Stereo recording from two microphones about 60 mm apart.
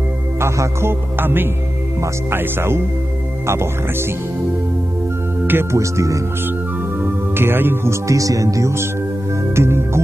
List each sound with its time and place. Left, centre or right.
0.4 s speech: right
5.5 s speech: right
5.8 s speech: right
7.0 s speech: right
8.1 s speech: right
9.6 s speech: right